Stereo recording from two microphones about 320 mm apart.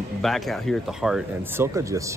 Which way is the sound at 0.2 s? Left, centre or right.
Centre.